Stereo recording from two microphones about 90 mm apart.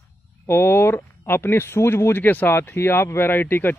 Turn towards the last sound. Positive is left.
turn(degrees=20)  # may be behind; listen again after turning